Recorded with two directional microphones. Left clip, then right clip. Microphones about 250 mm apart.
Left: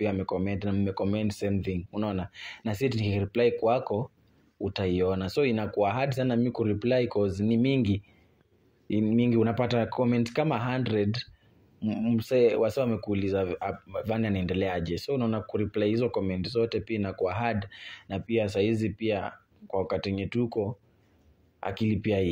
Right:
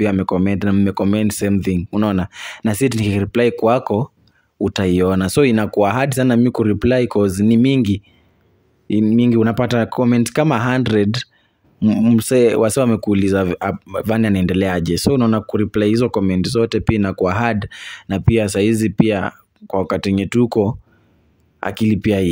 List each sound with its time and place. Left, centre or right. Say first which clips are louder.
0.0 s speech: right 11 dB; right